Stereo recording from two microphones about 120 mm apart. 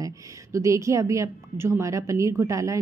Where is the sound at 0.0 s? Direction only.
25° right (ahead or behind).